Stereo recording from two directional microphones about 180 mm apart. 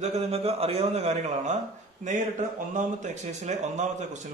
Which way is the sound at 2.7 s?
45° right (ahead or behind).